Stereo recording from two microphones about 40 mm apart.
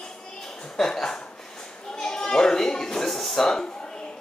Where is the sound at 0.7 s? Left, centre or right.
Centre.